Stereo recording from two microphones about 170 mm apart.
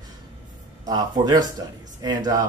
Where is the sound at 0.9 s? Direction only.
25° right (ahead or behind).